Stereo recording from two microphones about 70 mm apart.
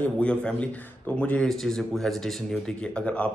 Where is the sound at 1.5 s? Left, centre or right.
Centre.